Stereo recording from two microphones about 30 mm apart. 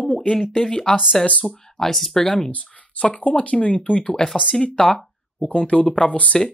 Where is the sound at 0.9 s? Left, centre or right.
Left.